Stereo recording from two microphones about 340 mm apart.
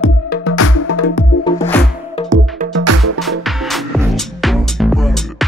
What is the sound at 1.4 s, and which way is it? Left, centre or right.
Music, centre.